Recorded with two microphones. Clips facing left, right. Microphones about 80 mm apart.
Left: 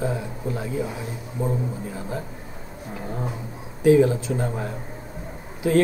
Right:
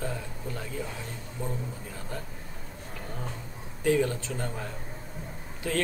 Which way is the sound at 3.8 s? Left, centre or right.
Centre.